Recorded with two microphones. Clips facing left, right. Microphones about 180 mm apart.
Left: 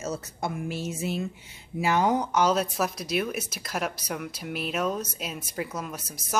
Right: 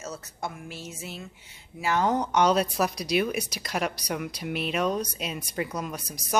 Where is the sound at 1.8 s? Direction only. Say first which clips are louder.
Left 1 dB; 10° left (ahead or behind).